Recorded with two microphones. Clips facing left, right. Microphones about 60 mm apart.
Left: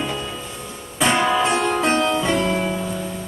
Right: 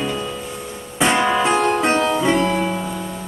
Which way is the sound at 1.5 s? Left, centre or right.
Right.